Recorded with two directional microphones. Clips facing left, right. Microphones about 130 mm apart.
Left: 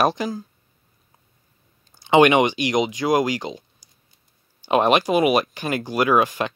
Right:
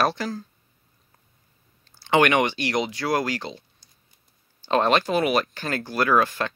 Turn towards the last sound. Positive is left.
turn(degrees=15)  # may be behind; listen again after turning